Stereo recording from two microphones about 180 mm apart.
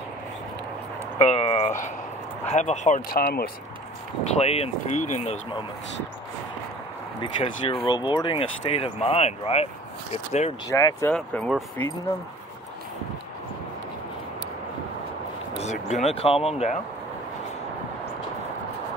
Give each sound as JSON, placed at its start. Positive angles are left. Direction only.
{"t": 1.1, "sound": "a sound", "side_deg": 35}
{"t": 2.4, "sound": "speech", "side_deg": 40}
{"t": 4.4, "sound": "speech", "side_deg": 35}
{"t": 7.2, "sound": "speech", "side_deg": 30}
{"t": 10.7, "sound": "speech", "side_deg": 20}
{"t": 11.1, "sound": "speech", "side_deg": 5}
{"t": 15.5, "sound": "speech", "side_deg": 40}